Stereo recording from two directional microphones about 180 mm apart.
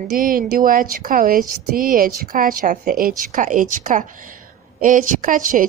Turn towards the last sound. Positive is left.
turn(degrees=-50)  # may be behind; listen again after turning